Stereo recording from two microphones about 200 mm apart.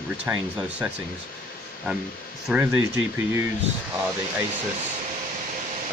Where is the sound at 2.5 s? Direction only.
10° right (ahead or behind).